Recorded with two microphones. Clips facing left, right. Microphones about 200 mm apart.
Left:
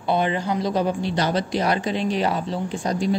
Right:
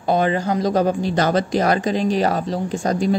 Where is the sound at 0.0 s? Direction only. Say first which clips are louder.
Right 4 dB; 45° right (ahead or behind).